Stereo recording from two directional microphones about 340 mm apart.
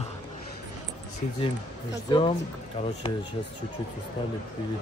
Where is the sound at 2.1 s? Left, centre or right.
Centre.